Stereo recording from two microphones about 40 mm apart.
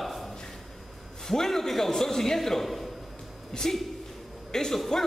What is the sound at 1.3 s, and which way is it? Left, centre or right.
A man's voice, centre.